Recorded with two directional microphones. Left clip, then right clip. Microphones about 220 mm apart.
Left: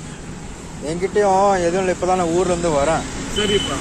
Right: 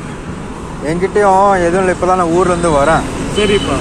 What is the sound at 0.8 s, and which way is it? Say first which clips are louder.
Speech: right 6 dB; 10° left (ahead or behind).